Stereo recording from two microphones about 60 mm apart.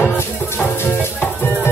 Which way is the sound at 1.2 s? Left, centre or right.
Left.